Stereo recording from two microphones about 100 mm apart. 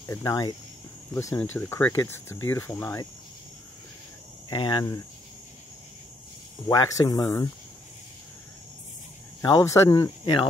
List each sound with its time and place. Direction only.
0.0 s speech: 25° left (ahead or behind)
0.3 s speech: 40° left (ahead or behind)
1.1 s speech: 25° left (ahead or behind)
4.5 s speech: 55° left (ahead or behind)
6.7 s speech: 35° left (ahead or behind)
9.4 s speech: 40° left (ahead or behind)